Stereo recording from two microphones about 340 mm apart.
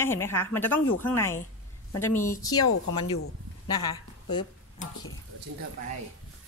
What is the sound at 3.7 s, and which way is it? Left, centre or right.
Speech, centre.